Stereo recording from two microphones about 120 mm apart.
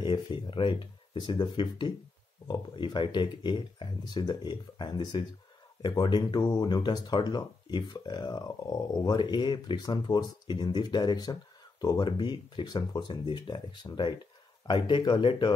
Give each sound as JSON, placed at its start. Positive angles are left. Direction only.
{"t": 0.0, "sound": "speech", "side_deg": 40}